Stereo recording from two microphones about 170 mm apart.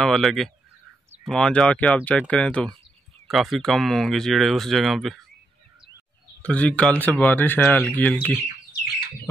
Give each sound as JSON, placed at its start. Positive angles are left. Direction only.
{"t": 0.0, "sound": "speech", "side_deg": 0}
{"t": 6.4, "sound": "speech", "side_deg": 10}